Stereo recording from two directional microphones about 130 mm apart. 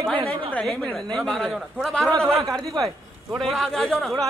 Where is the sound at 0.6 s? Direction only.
5° left (ahead or behind).